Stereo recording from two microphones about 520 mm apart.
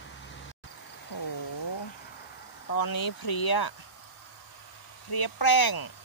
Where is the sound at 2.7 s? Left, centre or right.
Left.